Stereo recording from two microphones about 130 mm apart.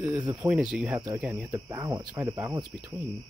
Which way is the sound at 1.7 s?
20° right (ahead or behind).